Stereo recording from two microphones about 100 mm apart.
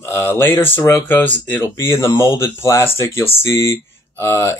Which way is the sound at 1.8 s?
25° left (ahead or behind).